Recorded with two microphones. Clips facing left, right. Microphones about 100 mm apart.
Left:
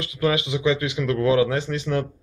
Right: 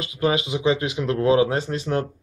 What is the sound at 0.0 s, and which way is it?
Speech, 30° right (ahead or behind).